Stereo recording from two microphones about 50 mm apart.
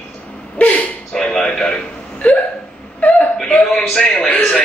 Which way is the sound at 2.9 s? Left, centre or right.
Left.